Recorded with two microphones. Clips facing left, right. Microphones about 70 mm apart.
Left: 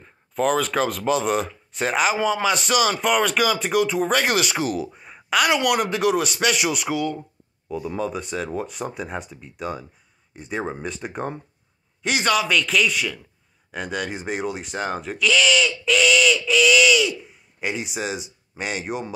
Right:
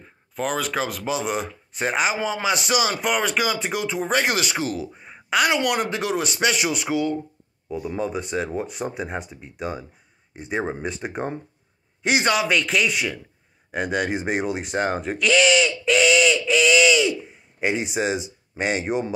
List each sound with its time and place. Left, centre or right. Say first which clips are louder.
0.0 s speech: left 5 dB; centre
4.9 s a sound: left 1 dB; centre
5.7 s speech: left 3 dB; centre